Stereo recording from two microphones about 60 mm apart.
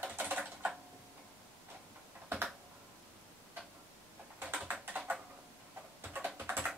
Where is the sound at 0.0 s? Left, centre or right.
Right.